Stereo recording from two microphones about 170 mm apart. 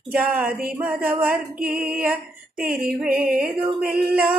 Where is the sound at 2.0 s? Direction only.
10° right (ahead or behind).